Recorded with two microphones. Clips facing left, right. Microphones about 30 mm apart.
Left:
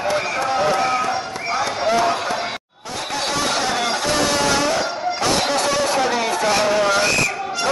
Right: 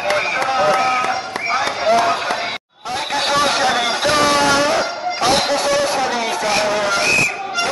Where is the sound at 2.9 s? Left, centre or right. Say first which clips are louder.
Right 5 dB; right.